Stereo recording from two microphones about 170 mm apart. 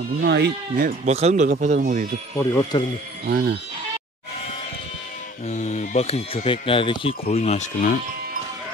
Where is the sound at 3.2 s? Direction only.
70° right (ahead or behind).